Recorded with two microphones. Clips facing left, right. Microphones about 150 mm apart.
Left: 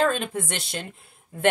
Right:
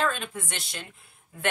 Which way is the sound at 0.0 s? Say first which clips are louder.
Left 5 dB; 40° left (ahead or behind).